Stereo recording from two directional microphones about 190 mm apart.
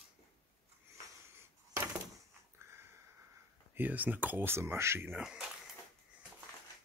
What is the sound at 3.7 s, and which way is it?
Speech, 10° right (ahead or behind).